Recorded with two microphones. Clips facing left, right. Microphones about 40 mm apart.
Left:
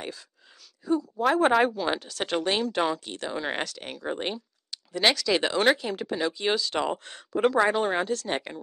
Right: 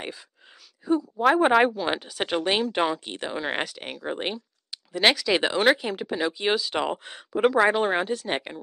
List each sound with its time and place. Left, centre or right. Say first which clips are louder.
0.8 s a woman's voice: right 3 dB; centre